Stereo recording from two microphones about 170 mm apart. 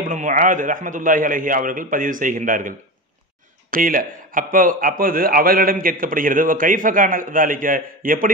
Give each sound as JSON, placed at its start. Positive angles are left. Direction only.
{"t": 0.0, "sound": "a man's voice", "side_deg": -50}
{"t": 3.7, "sound": "a man's voice", "side_deg": -55}